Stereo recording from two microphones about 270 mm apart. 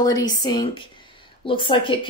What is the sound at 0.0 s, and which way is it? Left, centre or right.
A woman's voice, centre.